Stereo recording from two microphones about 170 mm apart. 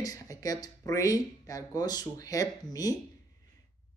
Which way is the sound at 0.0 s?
20° left (ahead or behind).